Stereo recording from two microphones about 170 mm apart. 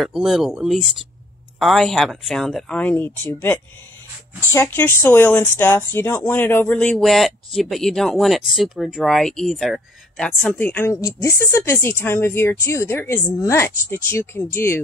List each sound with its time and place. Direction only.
0.0 s speech: 5° right (ahead or behind); by 14.8 s 15° left (ahead or behind)